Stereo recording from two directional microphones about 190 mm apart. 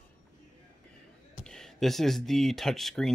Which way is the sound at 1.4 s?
Centre (ahead or behind).